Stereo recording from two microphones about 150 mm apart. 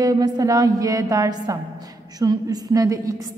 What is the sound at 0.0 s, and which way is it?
A woman's voice, 25° right (ahead or behind).